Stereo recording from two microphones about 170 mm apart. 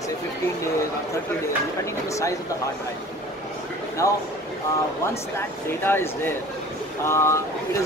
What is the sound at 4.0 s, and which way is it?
Speech, 20° left (ahead or behind).